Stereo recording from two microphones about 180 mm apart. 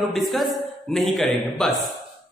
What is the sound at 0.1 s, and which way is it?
A man's voice, centre (ahead or behind).